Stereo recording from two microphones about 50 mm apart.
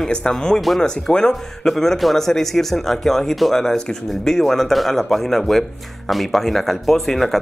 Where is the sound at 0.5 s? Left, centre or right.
Centre.